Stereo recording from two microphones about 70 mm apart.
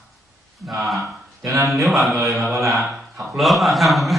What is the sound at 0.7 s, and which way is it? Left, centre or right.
Speech, centre.